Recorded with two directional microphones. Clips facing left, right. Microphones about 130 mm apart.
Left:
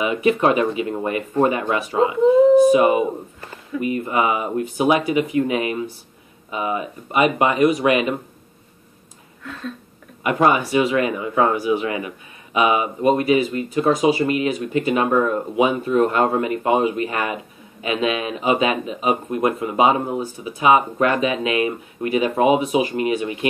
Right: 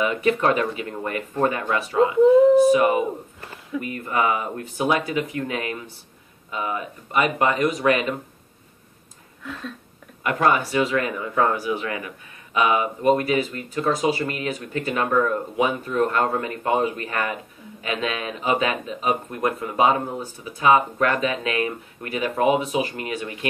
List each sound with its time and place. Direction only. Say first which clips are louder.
0.0 s speech: left 3 dB; 15° left (ahead or behind)
10.2 s speech: left 3 dB; 15° left (ahead or behind)